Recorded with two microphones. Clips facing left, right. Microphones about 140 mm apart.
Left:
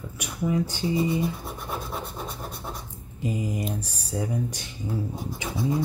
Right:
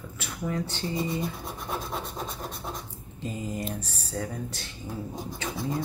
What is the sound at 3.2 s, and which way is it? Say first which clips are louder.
Speech: left 4 dB; 15° left (ahead or behind).